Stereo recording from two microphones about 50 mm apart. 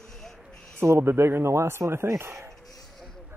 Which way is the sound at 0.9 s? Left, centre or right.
Right.